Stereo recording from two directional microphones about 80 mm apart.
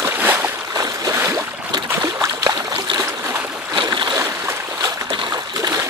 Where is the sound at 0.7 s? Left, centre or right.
Right.